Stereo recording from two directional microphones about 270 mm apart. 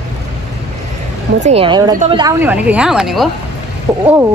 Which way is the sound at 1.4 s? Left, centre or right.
Right.